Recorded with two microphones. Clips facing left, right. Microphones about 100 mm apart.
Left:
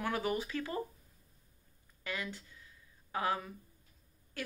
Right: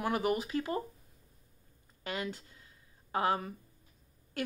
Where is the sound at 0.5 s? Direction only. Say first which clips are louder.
Right 4 dB; 40° right (ahead or behind).